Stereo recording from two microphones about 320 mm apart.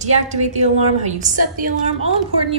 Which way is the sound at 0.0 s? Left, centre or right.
Right.